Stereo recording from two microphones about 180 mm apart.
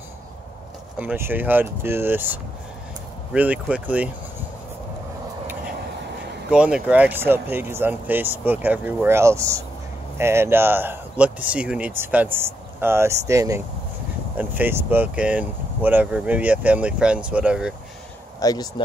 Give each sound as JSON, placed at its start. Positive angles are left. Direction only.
{"t": 0.9, "sound": "speech", "side_deg": -10}
{"t": 3.3, "sound": "speech", "side_deg": -5}
{"t": 6.5, "sound": "speech", "side_deg": -5}
{"t": 18.4, "sound": "speech", "side_deg": 20}